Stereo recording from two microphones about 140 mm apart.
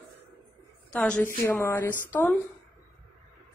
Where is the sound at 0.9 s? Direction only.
5° left (ahead or behind).